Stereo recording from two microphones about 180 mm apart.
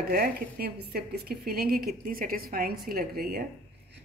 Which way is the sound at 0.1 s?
55° right (ahead or behind).